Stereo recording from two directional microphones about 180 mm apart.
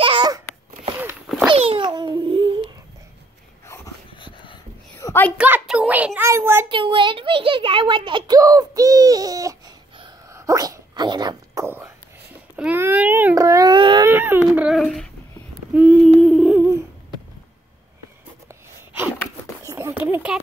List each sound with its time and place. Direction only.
0.0 s babbling: 25° right (ahead or behind)
1.5 s babbling: 30° right (ahead or behind)
3.6 s wheeze: 15° left (ahead or behind)
4.2 s a sound: 25° left (ahead or behind)
5.4 s a child's voice: 5° right (ahead or behind)
6.7 s a child's voice: 30° right (ahead or behind)
12.5 s baby cry: 10° right (ahead or behind); by 14.0 s 25° right (ahead or behind)
14.0 s baby cry: 10° right (ahead or behind)
15.7 s a sound: 5° right (ahead or behind)
16.2 s humming: centre (ahead or behind)
19.6 s a sound: 15° right (ahead or behind)